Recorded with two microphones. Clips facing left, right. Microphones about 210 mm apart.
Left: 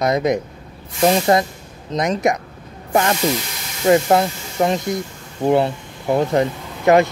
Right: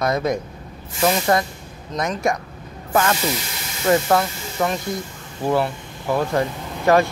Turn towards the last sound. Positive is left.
turn(degrees=20)  # may be behind; listen again after turning